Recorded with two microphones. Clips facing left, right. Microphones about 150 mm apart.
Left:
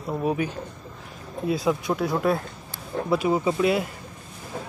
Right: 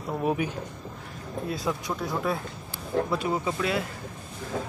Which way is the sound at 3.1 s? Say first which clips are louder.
Left 5 dB; 15° left (ahead or behind).